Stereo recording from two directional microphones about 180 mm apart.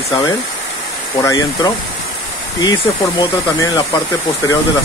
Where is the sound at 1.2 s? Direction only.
20° left (ahead or behind).